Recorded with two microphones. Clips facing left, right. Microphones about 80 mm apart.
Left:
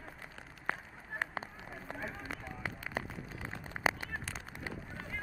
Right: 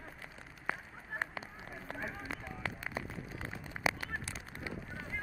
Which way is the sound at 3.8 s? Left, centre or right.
Left.